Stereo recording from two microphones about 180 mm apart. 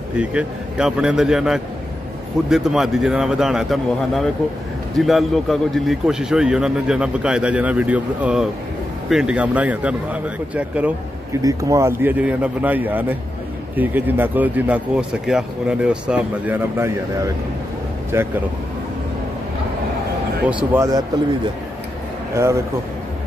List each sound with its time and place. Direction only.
0.2 s a man's voice: 5° right (ahead or behind)
18.1 s speech: 15° right (ahead or behind)
20.7 s speech: 15° right (ahead or behind)
22.3 s speech: 15° right (ahead or behind)